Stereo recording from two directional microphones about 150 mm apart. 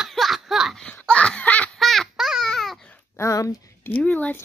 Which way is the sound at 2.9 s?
20° left (ahead or behind).